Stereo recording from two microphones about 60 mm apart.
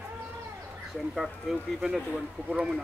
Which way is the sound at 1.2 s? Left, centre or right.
Centre.